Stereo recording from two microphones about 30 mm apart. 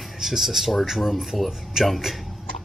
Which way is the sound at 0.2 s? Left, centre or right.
Centre.